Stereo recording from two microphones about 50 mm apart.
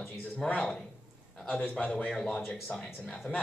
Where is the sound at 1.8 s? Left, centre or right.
Left.